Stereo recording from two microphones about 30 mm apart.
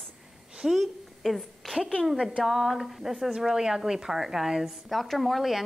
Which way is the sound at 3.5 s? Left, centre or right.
Centre.